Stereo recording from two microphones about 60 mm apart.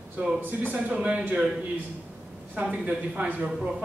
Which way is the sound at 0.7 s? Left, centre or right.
Right.